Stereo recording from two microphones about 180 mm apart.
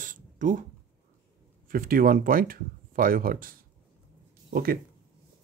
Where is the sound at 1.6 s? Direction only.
50° right (ahead or behind).